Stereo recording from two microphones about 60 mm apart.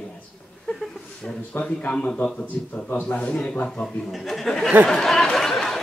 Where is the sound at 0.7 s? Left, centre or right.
Centre.